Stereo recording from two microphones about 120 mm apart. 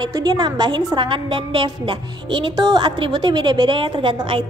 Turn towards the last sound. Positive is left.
turn(degrees=-45)  # may be behind; listen again after turning